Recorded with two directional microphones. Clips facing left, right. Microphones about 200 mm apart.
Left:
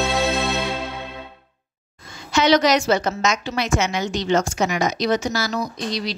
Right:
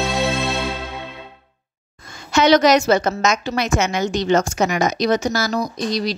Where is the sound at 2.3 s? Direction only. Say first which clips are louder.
Right 3 dB; 45° right (ahead or behind).